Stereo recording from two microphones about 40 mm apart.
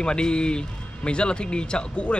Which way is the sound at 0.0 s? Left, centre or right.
Left.